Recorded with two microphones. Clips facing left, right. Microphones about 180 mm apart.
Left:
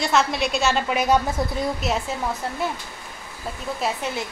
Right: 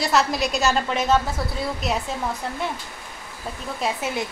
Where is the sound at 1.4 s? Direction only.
20° left (ahead or behind).